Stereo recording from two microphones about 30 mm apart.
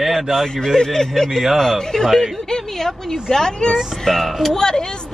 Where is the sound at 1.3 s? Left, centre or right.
Centre.